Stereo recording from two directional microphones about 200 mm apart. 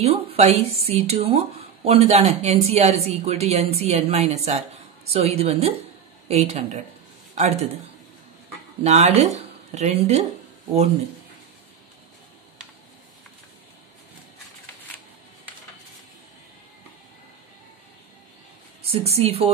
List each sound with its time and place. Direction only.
0.0 s speech: 30° right (ahead or behind)
8.8 s speech: 35° right (ahead or behind)
18.9 s speech: 30° right (ahead or behind)